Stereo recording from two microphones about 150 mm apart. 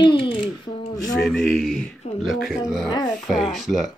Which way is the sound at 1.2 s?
Centre (ahead or behind).